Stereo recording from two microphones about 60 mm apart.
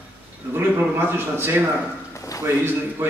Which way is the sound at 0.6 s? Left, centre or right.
Right.